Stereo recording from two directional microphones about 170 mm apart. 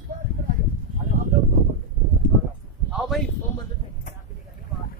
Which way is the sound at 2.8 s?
Centre (ahead or behind).